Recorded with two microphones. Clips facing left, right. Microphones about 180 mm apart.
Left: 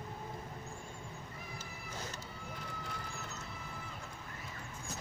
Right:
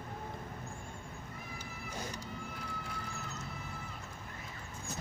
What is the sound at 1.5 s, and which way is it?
Cat, 10° right (ahead or behind).